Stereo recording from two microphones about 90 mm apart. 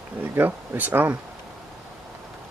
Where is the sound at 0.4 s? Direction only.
20° right (ahead or behind).